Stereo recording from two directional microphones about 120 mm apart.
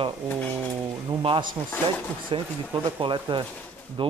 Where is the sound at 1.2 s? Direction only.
45° right (ahead or behind).